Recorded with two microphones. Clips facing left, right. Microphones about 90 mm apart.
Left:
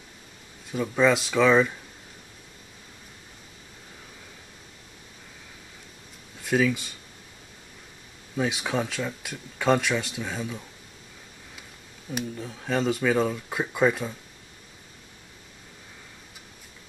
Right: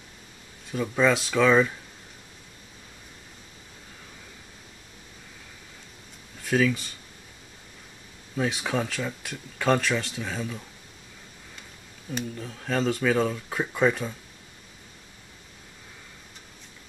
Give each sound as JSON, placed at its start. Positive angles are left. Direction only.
{"t": 0.7, "sound": "speech", "side_deg": 0}
{"t": 6.4, "sound": "speech", "side_deg": 5}
{"t": 8.4, "sound": "speech", "side_deg": 0}
{"t": 12.1, "sound": "speech", "side_deg": 5}